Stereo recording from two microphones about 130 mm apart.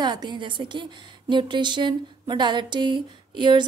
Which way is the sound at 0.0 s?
35° right (ahead or behind).